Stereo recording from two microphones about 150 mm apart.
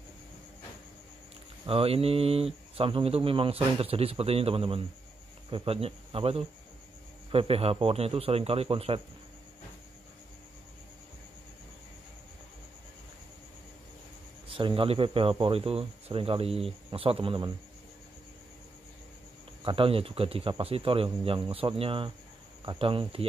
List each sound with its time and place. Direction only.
1.7 s speech: 40° right (ahead or behind)
14.5 s speech: 35° right (ahead or behind)
19.6 s speech: 35° right (ahead or behind)